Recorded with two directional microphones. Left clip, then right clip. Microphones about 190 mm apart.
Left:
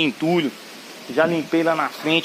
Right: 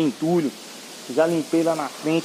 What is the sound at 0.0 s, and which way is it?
Speech, 15° left (ahead or behind).